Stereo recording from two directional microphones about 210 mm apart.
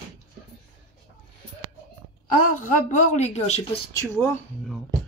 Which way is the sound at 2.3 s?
35° left (ahead or behind).